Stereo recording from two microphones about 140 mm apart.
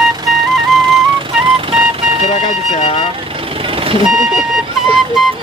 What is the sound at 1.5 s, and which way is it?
Music, 40° right (ahead or behind).